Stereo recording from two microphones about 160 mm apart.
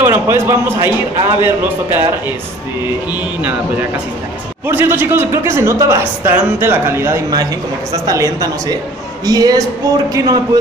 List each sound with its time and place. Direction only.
0.0 s a man's voice: 15° right (ahead or behind)